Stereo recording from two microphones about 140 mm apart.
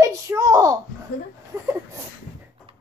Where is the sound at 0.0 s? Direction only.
20° right (ahead or behind).